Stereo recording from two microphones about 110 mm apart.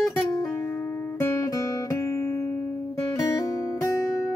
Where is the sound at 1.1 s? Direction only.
25° left (ahead or behind).